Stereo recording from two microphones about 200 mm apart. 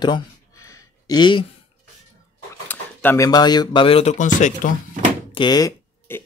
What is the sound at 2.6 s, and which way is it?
Speech, 10° left (ahead or behind).